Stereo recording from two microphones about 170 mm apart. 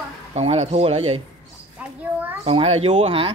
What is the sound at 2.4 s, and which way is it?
Speech, 35° right (ahead or behind).